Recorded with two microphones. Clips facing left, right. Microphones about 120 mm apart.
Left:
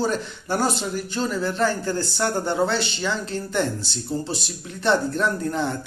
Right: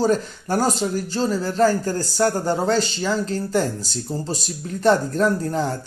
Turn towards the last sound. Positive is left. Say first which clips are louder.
# right 3 dB
turn(degrees=-35)  # may be behind; listen again after turning